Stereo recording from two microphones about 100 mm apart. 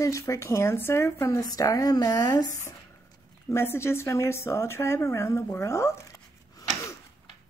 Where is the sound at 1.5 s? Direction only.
35° left (ahead or behind).